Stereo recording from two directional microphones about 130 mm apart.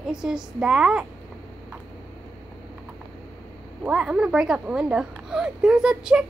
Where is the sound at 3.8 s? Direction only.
5° right (ahead or behind).